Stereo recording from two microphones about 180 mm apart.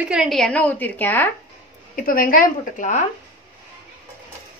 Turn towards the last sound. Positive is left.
turn(degrees=45)  # may be behind; listen again after turning